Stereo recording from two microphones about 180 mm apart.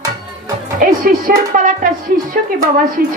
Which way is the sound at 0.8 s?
50° right (ahead or behind).